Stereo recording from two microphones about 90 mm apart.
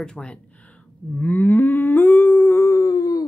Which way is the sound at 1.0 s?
20° left (ahead or behind).